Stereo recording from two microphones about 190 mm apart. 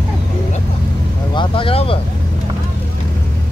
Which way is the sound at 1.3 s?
25° left (ahead or behind).